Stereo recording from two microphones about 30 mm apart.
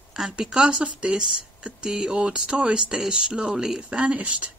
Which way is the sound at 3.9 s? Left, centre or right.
Right.